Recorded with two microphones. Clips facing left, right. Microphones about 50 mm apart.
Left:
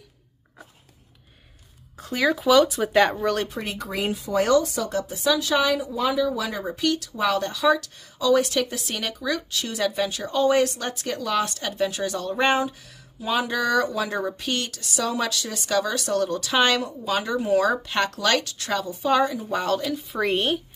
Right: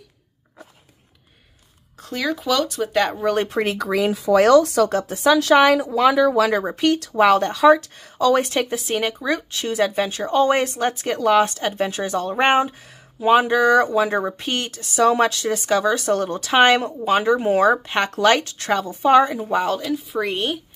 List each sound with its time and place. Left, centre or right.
2.0 s speech: centre
3.4 s speech: right
8.7 s speech: right
19.5 s speech: centre
20.0 s speech: centre